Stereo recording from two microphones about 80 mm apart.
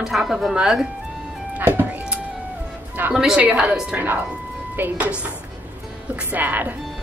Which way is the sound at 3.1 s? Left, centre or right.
Centre.